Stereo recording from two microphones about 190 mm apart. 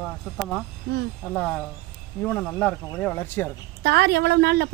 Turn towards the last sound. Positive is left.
turn(degrees=-60)  # may be behind; listen again after turning